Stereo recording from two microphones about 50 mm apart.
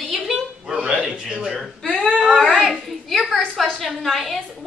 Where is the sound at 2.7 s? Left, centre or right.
Centre.